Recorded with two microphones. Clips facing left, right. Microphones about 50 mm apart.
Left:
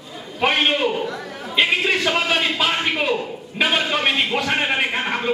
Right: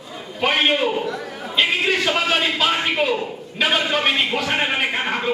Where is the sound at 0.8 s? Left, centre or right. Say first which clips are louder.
Even; centre.